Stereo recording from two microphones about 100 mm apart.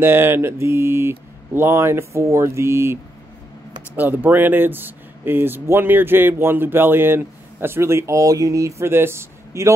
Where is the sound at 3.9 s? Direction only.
20° right (ahead or behind); by 8.7 s 35° right (ahead or behind).